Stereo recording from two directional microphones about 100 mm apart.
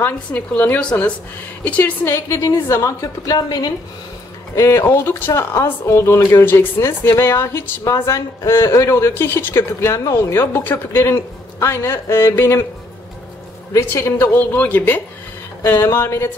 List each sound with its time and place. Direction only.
0.0 s speech: 20° left (ahead or behind); by 3.4 s 35° left (ahead or behind)
4.6 s speech: 30° left (ahead or behind)
13.7 s speech: 25° left (ahead or behind)